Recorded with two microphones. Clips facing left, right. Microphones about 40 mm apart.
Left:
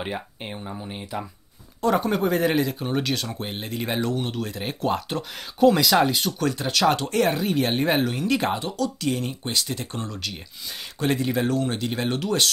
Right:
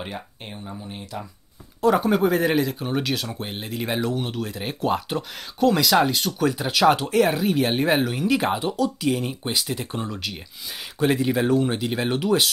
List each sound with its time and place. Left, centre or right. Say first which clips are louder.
0.0 s speech: left 3 dB; centre
1.8 s speech: right 3 dB; centre